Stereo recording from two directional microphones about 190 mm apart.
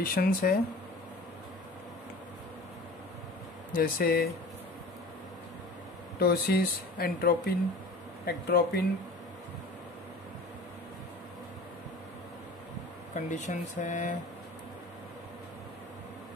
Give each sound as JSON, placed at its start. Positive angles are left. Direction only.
{"t": 0.0, "sound": "speech", "side_deg": 50}
{"t": 3.7, "sound": "speech", "side_deg": 50}
{"t": 6.1, "sound": "speech", "side_deg": 55}
{"t": 13.1, "sound": "speech", "side_deg": 40}